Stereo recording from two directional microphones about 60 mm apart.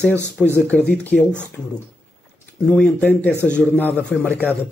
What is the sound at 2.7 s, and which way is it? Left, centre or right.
Speech, centre.